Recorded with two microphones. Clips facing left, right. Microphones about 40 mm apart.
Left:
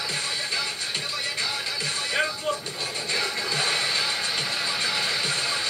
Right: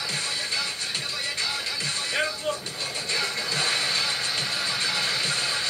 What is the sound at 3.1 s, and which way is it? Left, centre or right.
Music, centre.